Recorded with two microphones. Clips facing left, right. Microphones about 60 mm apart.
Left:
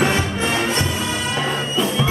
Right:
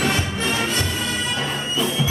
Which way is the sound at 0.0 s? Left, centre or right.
Left.